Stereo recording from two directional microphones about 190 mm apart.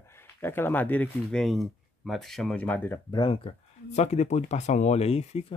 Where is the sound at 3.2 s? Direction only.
30° left (ahead or behind).